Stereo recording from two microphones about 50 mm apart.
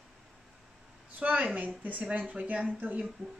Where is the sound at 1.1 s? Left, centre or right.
Right.